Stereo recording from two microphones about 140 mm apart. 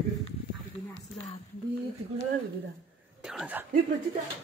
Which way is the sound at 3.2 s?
5° right (ahead or behind).